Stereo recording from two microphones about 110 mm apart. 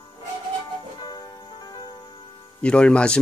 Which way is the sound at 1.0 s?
40° left (ahead or behind).